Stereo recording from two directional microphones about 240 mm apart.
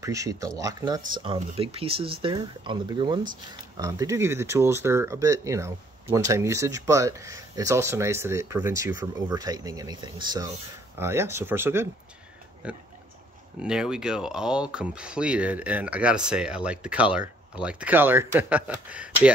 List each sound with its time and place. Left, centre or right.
0.0 s speech: centre